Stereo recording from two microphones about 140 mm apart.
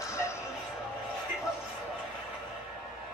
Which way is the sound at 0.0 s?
20° left (ahead or behind).